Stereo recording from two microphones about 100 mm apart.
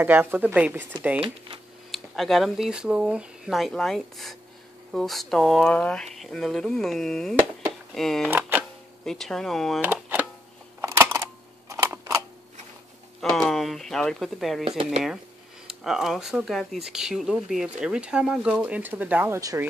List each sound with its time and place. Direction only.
0.0 s speech: 20° right (ahead or behind)
1.9 s speech: centre (ahead or behind)
8.3 s a sound: 20° right (ahead or behind)
9.0 s speech: 5° left (ahead or behind)
9.8 s a sound: 20° right (ahead or behind)
11.7 s camera: 30° right (ahead or behind)
13.2 s speech: 5° left (ahead or behind)
14.6 s speech: 65° right (ahead or behind)
15.6 s speech: 5° right (ahead or behind); by 19.6 s 30° right (ahead or behind)